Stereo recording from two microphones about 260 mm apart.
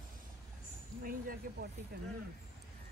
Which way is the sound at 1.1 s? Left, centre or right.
Right.